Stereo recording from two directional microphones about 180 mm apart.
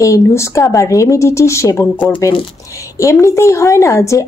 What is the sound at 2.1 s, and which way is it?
Speech, 25° left (ahead or behind).